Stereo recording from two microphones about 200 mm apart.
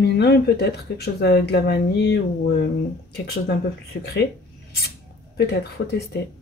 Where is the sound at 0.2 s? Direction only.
55° left (ahead or behind).